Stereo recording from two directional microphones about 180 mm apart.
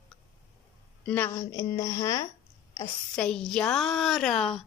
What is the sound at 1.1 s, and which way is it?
A woman's voice, 10° left (ahead or behind).